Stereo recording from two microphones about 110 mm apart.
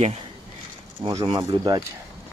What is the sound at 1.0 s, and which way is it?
Speech, 45° right (ahead or behind).